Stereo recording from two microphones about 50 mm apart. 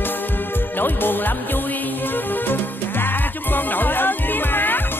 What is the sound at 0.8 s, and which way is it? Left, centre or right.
Music, left.